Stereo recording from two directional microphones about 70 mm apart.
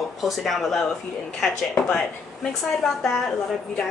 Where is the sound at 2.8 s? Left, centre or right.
Centre.